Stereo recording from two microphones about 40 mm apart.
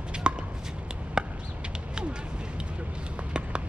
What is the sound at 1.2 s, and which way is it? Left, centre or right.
Chop, centre.